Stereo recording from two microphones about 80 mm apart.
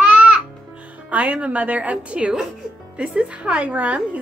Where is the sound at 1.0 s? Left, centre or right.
Centre.